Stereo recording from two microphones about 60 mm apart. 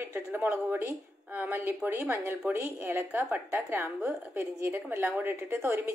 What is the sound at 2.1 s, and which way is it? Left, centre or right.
A woman's voice, right.